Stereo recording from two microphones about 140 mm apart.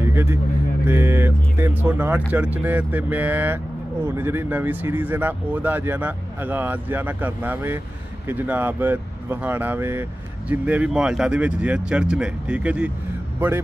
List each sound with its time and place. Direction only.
0.0 s vehicle: 20° right (ahead or behind)
0.8 s speech: 15° right (ahead or behind)